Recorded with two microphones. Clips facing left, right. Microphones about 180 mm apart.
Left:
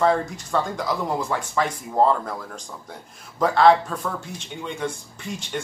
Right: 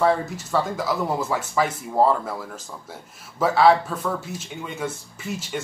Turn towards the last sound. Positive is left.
turn(degrees=-5)  # may be behind; listen again after turning